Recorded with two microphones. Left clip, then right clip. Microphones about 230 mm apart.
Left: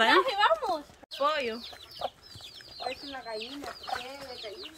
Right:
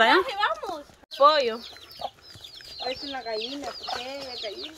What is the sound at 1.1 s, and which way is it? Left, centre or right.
Speech, right.